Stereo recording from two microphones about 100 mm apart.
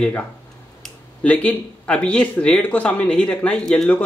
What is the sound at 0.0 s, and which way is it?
Speech, 15° left (ahead or behind).